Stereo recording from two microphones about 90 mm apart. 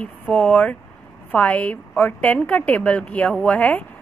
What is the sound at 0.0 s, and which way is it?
A woman's voice, 15° left (ahead or behind).